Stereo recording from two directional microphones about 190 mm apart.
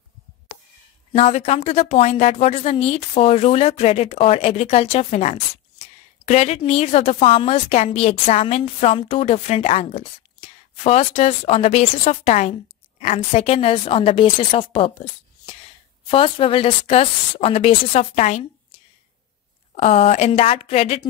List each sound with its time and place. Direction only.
1.1 s a woman's voice: 35° left (ahead or behind)
16.1 s a woman's voice: 30° left (ahead or behind)
19.7 s a woman's voice: 30° left (ahead or behind)